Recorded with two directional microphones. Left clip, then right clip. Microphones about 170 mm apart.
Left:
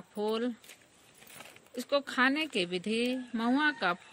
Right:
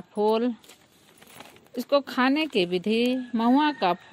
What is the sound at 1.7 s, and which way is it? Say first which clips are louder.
Speech: right 7 dB; 15° left (ahead or behind).